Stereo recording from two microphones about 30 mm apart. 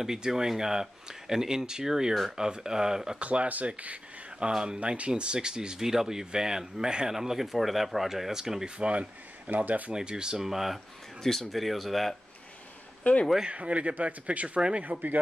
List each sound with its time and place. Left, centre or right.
0.3 s speech: centre
3.2 s a man's voice: right
3.4 s speech: right
4.4 s speech: right
4.9 s speech: right
5.9 s speech: centre
7.1 s speech: centre
8.6 s speech: right
9.5 s speech: right
10.0 s speech: right
10.4 s speech: centre
11.2 s speech: centre
13.5 s a man's voice: right
14.8 s speech: right